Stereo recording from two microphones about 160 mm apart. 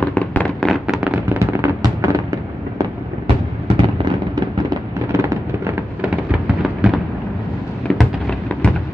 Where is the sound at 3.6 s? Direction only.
30° right (ahead or behind).